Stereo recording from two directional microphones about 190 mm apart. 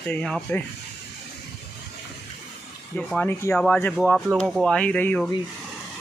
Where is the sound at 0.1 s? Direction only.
5° left (ahead or behind).